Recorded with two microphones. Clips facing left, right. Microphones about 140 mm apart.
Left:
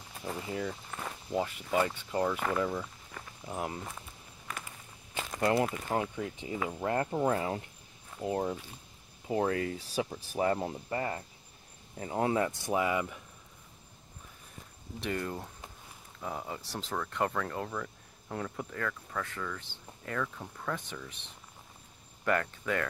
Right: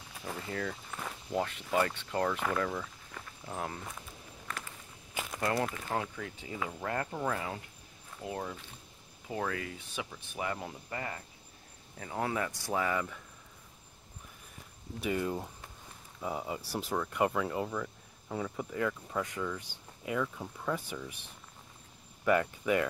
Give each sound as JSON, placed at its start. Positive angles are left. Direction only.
{"t": 0.2, "sound": "speech", "side_deg": 15}
{"t": 3.2, "sound": "walk", "side_deg": 5}
{"t": 5.4, "sound": "speech", "side_deg": 25}
{"t": 5.7, "sound": "speech", "side_deg": 5}
{"t": 5.9, "sound": "speech", "side_deg": 20}
{"t": 15.0, "sound": "speech", "side_deg": -5}
{"t": 18.8, "sound": "speech", "side_deg": -15}